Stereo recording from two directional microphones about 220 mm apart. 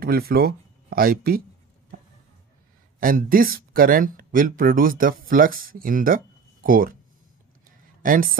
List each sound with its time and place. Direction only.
0.0 s speech: 45° right (ahead or behind)
3.0 s speech: 40° right (ahead or behind)
8.0 s a woman's voice: 40° right (ahead or behind)